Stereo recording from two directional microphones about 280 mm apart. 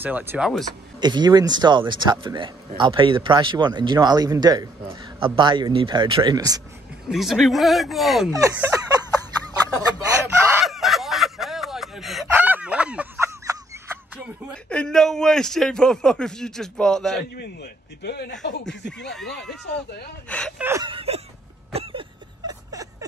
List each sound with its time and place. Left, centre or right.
0.0 s speech: centre
1.0 s speech: centre
7.1 s speech: centre
8.3 s speech: centre
10.2 s fowl: centre
17.4 s speech: left
19.3 s speech: centre
20.6 s speech: centre
22.5 s a sound: centre